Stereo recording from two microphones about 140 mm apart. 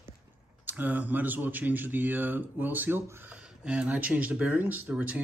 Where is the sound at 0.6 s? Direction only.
10° right (ahead or behind).